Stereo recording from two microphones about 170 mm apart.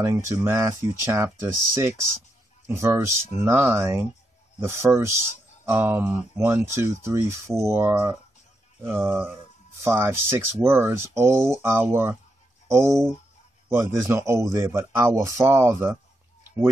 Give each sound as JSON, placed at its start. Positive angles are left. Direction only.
{"t": 0.0, "sound": "speech", "side_deg": -15}